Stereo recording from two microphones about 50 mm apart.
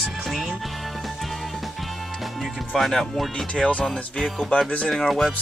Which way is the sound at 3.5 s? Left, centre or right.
Centre.